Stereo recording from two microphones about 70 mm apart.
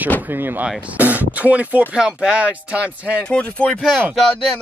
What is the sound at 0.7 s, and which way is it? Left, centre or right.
Speech, centre.